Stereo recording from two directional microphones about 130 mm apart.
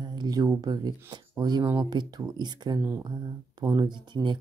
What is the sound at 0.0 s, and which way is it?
Speech, 30° right (ahead or behind).